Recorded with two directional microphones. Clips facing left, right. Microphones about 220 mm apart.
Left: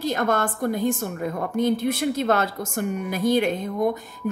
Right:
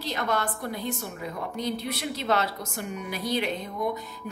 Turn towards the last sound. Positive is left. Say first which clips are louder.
# left 7 dB
turn(degrees=50)  # may be behind; listen again after turning